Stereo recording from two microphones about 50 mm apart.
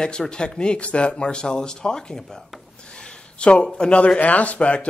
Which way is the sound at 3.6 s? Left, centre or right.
Centre.